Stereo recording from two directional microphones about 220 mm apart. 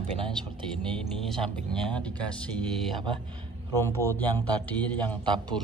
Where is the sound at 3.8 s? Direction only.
10° left (ahead or behind).